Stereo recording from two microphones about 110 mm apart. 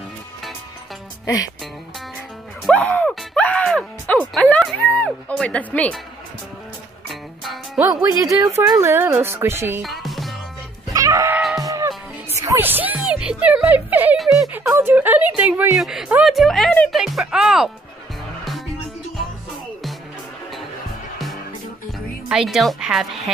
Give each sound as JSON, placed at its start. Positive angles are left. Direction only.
{"t": 1.2, "sound": "speech", "side_deg": 35}
{"t": 2.7, "sound": "speech", "side_deg": 10}
{"t": 3.3, "sound": "music", "side_deg": 10}
{"t": 4.3, "sound": "speech", "side_deg": 5}
{"t": 7.1, "sound": "music", "side_deg": 0}
{"t": 8.2, "sound": "speech", "side_deg": -30}
{"t": 9.8, "sound": "music", "side_deg": 0}
{"t": 10.9, "sound": "music", "side_deg": -30}
{"t": 14.1, "sound": "music", "side_deg": 0}
{"t": 14.7, "sound": "a woman's voice", "side_deg": -20}
{"t": 22.3, "sound": "a woman's voice", "side_deg": -5}